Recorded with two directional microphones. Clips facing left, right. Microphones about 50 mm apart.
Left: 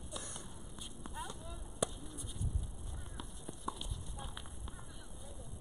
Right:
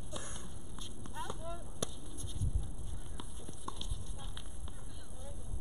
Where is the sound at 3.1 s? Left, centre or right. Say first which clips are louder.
Left 1 dB; centre.